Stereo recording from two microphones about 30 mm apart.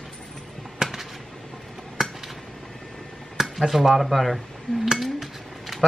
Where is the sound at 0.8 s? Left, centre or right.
Centre.